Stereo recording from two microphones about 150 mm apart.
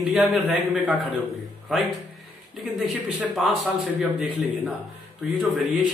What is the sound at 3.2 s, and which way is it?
Speech, 5° right (ahead or behind).